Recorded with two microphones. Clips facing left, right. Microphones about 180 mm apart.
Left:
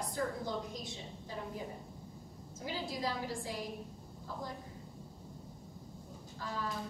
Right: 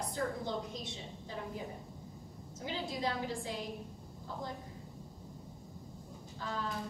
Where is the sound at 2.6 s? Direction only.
Centre (ahead or behind).